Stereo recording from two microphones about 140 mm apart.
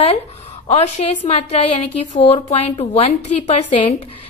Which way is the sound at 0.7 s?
50° left (ahead or behind).